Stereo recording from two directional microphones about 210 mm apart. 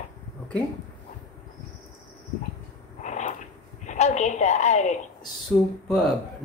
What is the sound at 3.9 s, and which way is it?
A woman's voice, 35° left (ahead or behind).